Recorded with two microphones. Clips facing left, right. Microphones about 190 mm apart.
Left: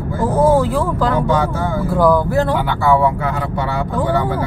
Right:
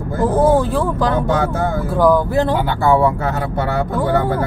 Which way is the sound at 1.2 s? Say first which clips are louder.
Even; 50° right (ahead or behind).